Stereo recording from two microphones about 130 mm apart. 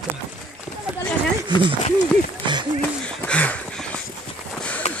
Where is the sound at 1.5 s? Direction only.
35° right (ahead or behind).